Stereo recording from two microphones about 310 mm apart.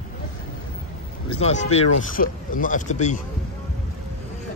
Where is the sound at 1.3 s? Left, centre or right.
Left.